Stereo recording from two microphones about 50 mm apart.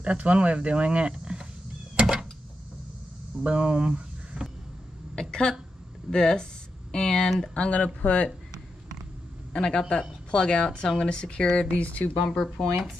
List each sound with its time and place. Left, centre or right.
0.0 s speech: right
2.0 s a sound: centre
3.3 s speech: right
5.3 s speech: centre
7.5 s speech: left
9.5 s speech: centre
12.3 s speech: centre